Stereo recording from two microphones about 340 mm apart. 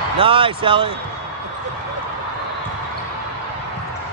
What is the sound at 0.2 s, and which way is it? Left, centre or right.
Speech, centre.